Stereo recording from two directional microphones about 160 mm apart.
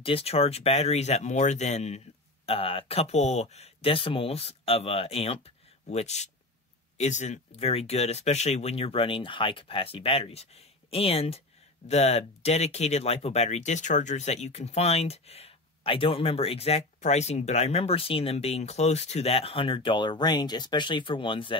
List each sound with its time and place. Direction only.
0.0 s speech: 35° left (ahead or behind)